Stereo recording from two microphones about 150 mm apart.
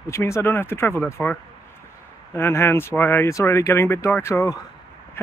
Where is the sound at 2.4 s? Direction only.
15° left (ahead or behind).